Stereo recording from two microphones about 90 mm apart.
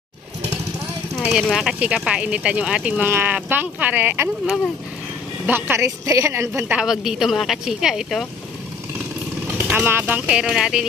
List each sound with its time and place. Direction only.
1.3 s speech: 5° right (ahead or behind)
3.1 s speech: 25° right (ahead or behind)
6.0 s speech: 35° right (ahead or behind)
6.7 s speech: 5° right (ahead or behind)
9.5 s vehicle: 15° right (ahead or behind)
9.8 s speech: 20° right (ahead or behind)